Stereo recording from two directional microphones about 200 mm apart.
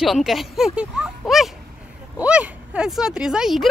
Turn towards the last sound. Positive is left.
turn(degrees=0)  # may be behind; listen again after turning